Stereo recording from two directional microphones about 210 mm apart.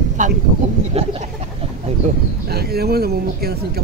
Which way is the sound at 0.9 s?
30° right (ahead or behind).